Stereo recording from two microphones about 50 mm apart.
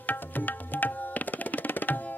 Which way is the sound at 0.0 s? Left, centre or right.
Left.